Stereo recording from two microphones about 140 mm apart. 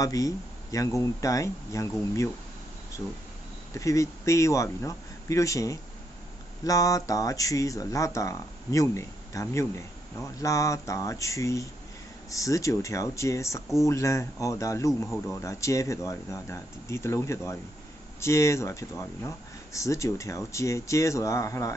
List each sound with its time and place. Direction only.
0.0 s speech: 25° left (ahead or behind)
3.7 s speech: 20° left (ahead or behind)